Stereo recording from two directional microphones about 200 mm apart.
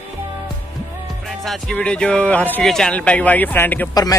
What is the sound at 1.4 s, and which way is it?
Speech, centre (ahead or behind).